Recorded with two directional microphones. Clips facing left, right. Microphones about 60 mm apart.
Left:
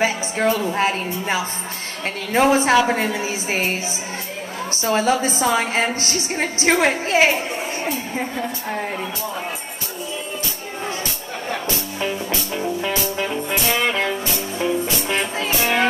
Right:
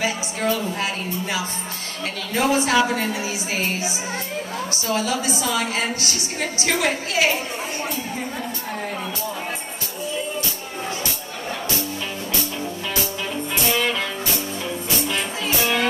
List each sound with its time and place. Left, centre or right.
0.0 s a woman's voice: left
4.8 s a woman's voice: left
12.8 s music: left